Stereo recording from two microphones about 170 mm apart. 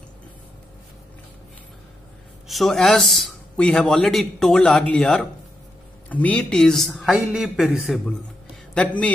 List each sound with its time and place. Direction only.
2.4 s a man's voice: centre (ahead or behind)
8.7 s a man's voice: 10° left (ahead or behind)